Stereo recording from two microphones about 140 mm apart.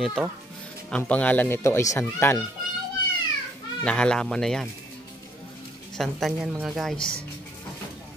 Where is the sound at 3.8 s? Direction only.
5° left (ahead or behind).